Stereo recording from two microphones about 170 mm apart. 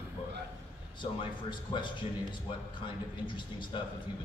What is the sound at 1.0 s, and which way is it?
Speech, 30° left (ahead or behind).